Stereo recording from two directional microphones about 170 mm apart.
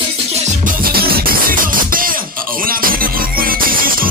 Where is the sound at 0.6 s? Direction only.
60° right (ahead or behind).